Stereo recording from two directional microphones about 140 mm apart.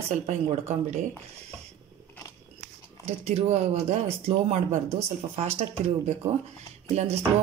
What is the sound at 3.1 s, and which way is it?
Speech, 50° right (ahead or behind).